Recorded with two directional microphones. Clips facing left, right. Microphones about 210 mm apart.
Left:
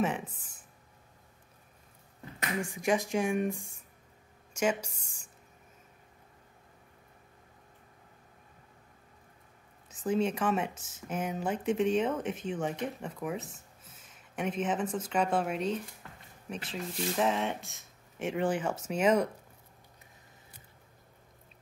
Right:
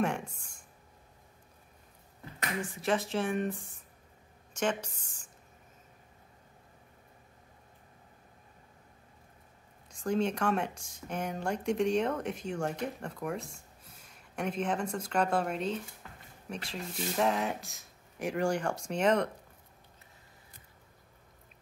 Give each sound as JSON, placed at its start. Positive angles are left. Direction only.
{"t": 0.0, "sound": "speech", "side_deg": 5}
{"t": 2.6, "sound": "speech", "side_deg": 15}
{"t": 4.8, "sound": "speech", "side_deg": 10}
{"t": 9.8, "sound": "speech", "side_deg": 5}